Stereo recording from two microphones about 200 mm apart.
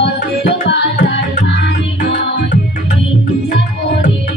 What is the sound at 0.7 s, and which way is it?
Music, 60° left (ahead or behind).